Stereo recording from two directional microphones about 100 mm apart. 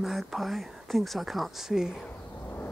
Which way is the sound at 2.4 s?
20° left (ahead or behind).